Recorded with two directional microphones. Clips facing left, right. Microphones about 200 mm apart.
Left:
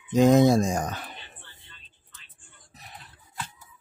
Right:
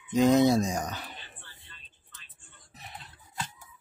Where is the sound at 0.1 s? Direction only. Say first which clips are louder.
Left 3 dB; 50° left (ahead or behind).